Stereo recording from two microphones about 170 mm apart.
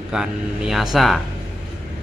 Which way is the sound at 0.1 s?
5° right (ahead or behind).